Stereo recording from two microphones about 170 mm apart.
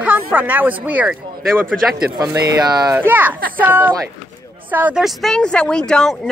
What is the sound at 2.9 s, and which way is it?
A woman's voice, 10° right (ahead or behind).